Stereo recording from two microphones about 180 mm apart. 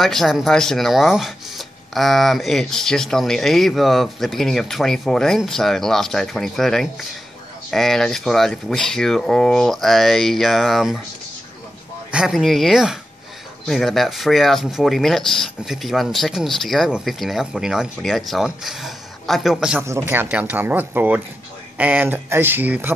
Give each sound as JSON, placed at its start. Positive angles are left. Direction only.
{"t": 0.0, "sound": "speech", "side_deg": 0}
{"t": 12.1, "sound": "speech", "side_deg": -5}
{"t": 19.8, "sound": "speech", "side_deg": -15}